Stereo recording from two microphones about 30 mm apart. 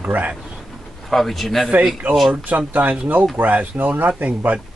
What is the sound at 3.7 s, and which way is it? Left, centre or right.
Speech, right.